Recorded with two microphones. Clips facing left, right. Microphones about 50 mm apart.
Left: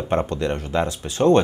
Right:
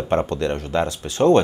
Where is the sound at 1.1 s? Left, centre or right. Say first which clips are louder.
Right 1 dB; centre.